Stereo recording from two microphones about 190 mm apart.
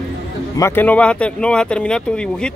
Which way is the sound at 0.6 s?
10° left (ahead or behind).